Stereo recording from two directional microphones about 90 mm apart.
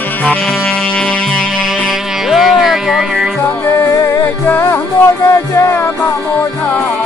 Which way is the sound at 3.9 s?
35° left (ahead or behind).